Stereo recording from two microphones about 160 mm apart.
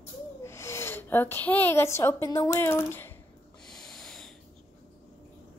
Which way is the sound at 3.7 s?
5° left (ahead or behind).